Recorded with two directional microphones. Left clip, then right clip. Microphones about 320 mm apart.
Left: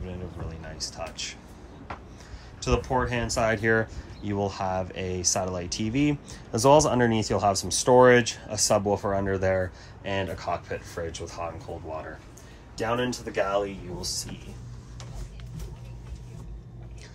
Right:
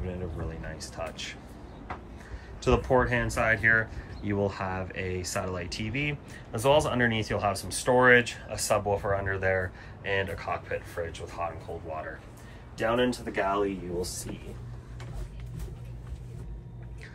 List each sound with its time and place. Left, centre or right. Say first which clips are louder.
0.0 s speech: right 2 dB; centre
2.6 s speech: right 2 dB; centre
12.7 s speech: right 1 dB; centre